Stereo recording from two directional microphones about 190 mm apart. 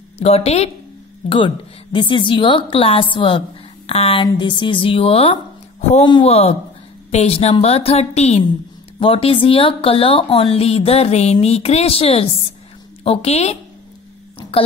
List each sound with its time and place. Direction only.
0.2 s a woman's voice: 35° left (ahead or behind)